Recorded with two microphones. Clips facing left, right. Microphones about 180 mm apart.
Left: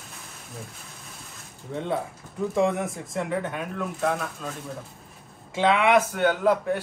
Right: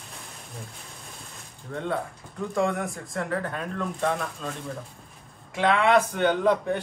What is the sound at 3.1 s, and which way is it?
A man's voice, 5° left (ahead or behind).